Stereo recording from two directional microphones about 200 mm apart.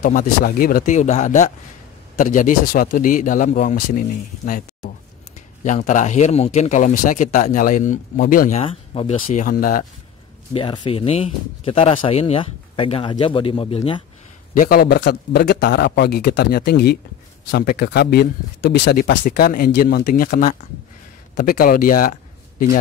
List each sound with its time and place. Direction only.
0.0 s speech: 45° left (ahead or behind)
8.5 s speech: 30° left (ahead or behind)
10.5 s speech: 25° left (ahead or behind)
14.5 s a man's voice: 45° left (ahead or behind)
19.2 s a man's voice: 45° left (ahead or behind)